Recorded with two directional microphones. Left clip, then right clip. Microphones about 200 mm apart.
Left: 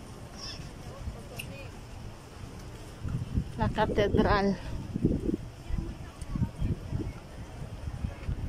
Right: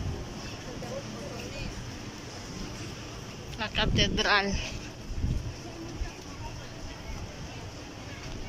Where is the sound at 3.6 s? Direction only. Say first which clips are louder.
Left 1 dB; 35° left (ahead or behind).